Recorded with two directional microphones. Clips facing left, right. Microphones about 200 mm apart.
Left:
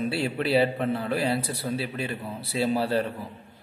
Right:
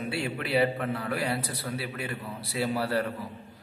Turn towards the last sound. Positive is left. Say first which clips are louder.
# left 3 dB
turn(degrees=25)  # may be behind; listen again after turning